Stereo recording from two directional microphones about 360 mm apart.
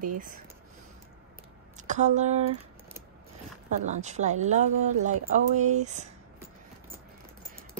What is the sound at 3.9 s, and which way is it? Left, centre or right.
Speech, centre.